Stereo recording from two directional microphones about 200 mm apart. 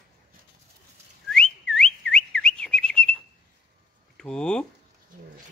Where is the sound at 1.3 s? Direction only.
5° left (ahead or behind).